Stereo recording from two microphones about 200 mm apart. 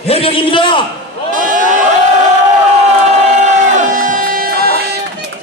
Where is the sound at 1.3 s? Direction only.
40° right (ahead or behind).